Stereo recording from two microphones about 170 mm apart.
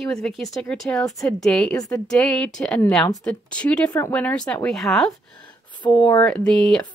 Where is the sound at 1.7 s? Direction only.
15° left (ahead or behind).